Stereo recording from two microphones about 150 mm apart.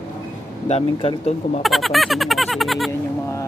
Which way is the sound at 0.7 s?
40° left (ahead or behind).